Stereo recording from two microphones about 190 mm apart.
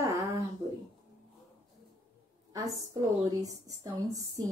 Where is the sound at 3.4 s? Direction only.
20° right (ahead or behind).